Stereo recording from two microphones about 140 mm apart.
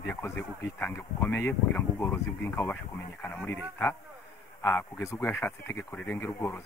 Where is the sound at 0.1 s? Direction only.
15° left (ahead or behind).